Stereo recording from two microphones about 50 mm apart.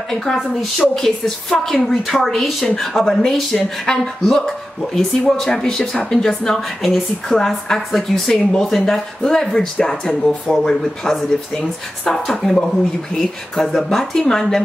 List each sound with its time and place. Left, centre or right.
0.1 s a woman's voice: centre